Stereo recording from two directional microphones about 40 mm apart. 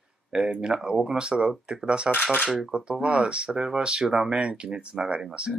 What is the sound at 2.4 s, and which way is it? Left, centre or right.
Speech, centre.